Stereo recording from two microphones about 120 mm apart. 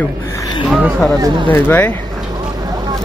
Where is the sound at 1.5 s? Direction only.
15° left (ahead or behind).